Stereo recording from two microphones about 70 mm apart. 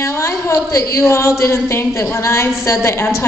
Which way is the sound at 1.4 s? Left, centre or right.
Left.